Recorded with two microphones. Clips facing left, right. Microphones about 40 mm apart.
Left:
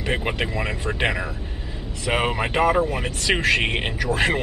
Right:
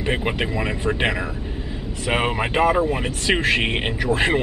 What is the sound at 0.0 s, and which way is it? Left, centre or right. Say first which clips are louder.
Speech: right 2 dB; centre.